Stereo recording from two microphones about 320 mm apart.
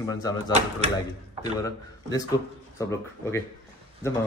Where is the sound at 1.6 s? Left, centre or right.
Centre.